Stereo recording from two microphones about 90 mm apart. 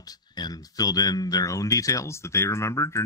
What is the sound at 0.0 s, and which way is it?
Speech, 45° left (ahead or behind).